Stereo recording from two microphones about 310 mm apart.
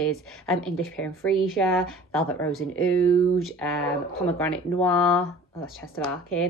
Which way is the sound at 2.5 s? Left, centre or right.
Left.